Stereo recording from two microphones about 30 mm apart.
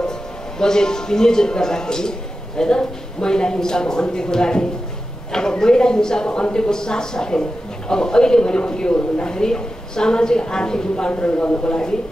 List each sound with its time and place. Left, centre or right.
0.6 s speech: left
11.2 s a man's voice: left
11.6 s speech: left